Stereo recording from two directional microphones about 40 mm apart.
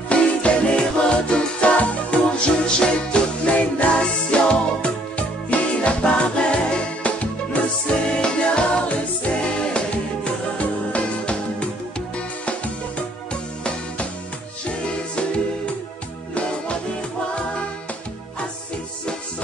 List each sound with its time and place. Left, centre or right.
0.1 s music: left
1.8 s music: left
7.8 s music: left
10.6 s music: left
13.3 s music: left
15.1 s music: left